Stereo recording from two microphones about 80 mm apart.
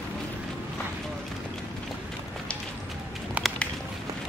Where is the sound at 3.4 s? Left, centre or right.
Centre.